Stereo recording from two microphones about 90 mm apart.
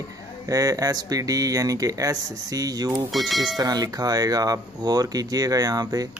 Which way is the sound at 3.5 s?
45° right (ahead or behind).